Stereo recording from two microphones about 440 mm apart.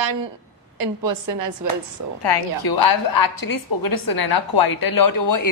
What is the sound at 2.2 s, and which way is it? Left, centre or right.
A woman's voice, left.